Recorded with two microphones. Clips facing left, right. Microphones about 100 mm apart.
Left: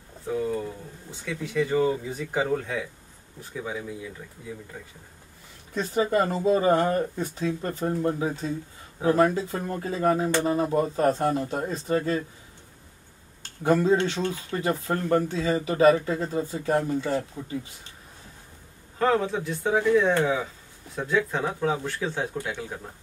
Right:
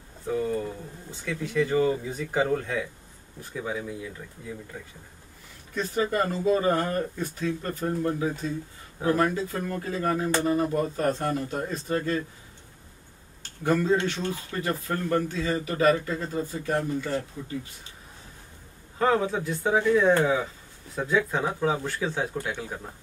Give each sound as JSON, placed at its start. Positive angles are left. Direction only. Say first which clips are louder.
{"t": 0.3, "sound": "a sound", "louder": "even", "side_deg": 0}
{"t": 1.1, "sound": "speech", "louder": "even", "side_deg": 0}
{"t": 5.9, "sound": "speech", "louder": "left 3 dB", "side_deg": 25}
{"t": 13.7, "sound": "speech", "louder": "left 2 dB", "side_deg": 30}
{"t": 18.9, "sound": "speech", "louder": "even", "side_deg": -5}